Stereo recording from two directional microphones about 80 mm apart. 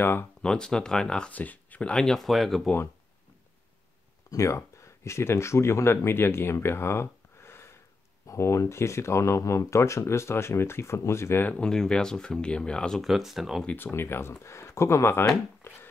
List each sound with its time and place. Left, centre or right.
0.0 s speech: left
0.4 s speech: centre
4.3 s speech: left
11.4 s speech: centre
13.0 s speech: centre
13.7 s speech: left
15.6 s hands: left